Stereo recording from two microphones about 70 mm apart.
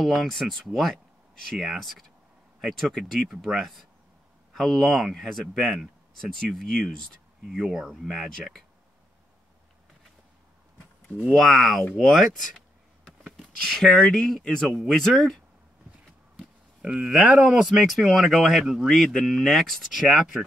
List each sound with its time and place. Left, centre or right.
0.0 s speech: centre
11.3 s speech: centre
16.8 s speech: centre
17.4 s speech: centre
17.8 s speech: centre
20.1 s speech: centre